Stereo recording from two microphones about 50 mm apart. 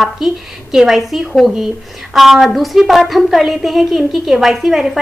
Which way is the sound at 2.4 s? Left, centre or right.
Centre.